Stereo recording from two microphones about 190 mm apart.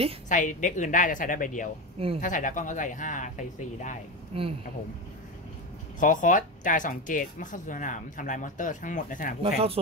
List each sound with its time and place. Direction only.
0.3 s speech: 40° left (ahead or behind)
4.3 s speech: 30° right (ahead or behind)
5.9 s speech: 45° left (ahead or behind)
9.4 s speech: 30° right (ahead or behind)